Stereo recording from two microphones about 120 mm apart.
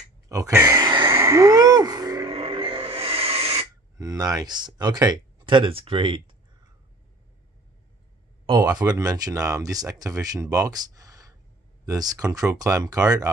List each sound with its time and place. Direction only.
0.3 s speech: 25° right (ahead or behind)
0.7 s a sound: 35° right (ahead or behind)
1.1 s a sound: 25° right (ahead or behind)
2.2 s music: 50° right (ahead or behind)
4.0 s speech: 30° right (ahead or behind)
5.4 s speech: 45° right (ahead or behind)
8.5 s speech: 35° right (ahead or behind)